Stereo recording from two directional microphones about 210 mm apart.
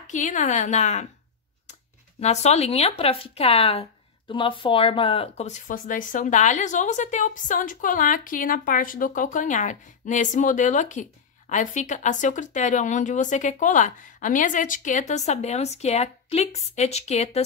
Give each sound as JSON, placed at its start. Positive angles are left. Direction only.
{"t": 0.0, "sound": "speech", "side_deg": 35}